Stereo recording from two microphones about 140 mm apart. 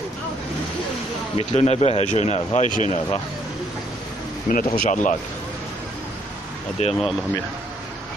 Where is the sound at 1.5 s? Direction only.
50° left (ahead or behind).